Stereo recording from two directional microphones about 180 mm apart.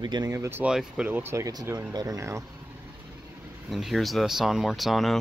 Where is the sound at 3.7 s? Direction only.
Centre (ahead or behind).